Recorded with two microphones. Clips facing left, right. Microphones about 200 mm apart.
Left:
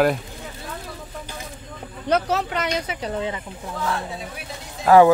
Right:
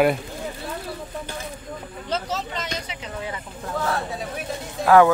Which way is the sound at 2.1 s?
65° left (ahead or behind).